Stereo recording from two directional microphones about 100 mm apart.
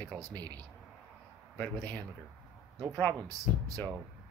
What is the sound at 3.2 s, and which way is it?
Speech, 35° right (ahead or behind).